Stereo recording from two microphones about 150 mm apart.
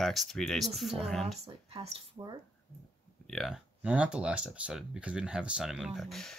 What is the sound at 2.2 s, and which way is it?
Speech, 30° right (ahead or behind).